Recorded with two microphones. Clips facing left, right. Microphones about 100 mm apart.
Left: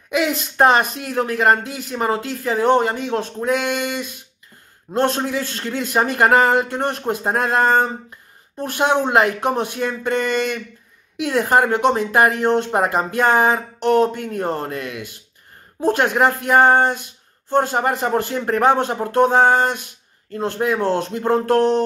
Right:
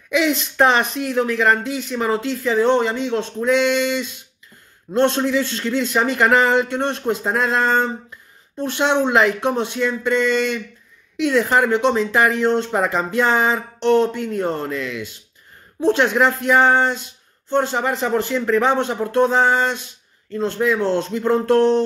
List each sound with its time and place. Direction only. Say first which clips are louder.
0.1 s speech: right 1 dB; 45° left (ahead or behind)